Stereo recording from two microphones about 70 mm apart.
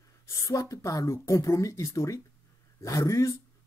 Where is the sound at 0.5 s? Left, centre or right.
Left.